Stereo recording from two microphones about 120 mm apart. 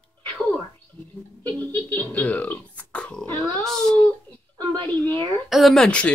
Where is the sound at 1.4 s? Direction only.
15° left (ahead or behind).